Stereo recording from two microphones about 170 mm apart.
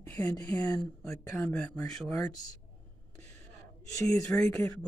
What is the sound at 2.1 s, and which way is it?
Speech, 20° left (ahead or behind).